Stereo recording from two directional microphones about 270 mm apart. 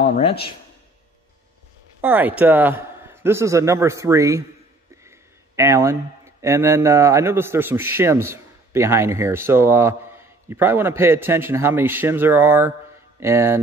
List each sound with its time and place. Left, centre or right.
0.2 s speech: centre
2.0 s a man's voice: centre